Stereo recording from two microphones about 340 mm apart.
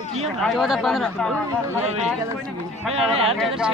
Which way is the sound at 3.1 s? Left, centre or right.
Centre.